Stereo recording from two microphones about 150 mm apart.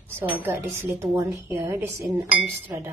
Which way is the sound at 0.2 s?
15° right (ahead or behind).